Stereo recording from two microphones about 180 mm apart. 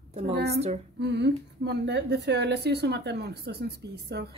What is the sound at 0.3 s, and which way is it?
A woman's voice, 65° right (ahead or behind).